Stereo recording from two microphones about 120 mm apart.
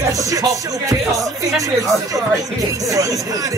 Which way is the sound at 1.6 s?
30° right (ahead or behind).